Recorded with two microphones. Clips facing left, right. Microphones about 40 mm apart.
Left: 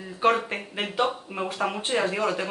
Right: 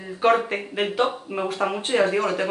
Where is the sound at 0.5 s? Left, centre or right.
Centre.